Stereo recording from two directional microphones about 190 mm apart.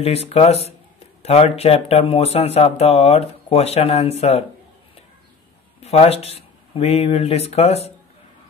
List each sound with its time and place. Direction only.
0.0 s speech: 30° left (ahead or behind)
5.8 s speech: 30° left (ahead or behind)